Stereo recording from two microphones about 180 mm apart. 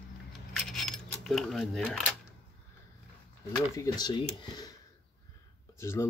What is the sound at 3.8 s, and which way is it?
Speech, 20° left (ahead or behind).